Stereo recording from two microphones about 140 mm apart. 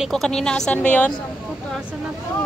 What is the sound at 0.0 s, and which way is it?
A woman's voice, centre (ahead or behind).